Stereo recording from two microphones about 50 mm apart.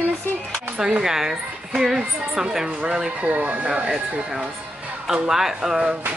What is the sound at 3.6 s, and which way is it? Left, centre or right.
Speech, centre.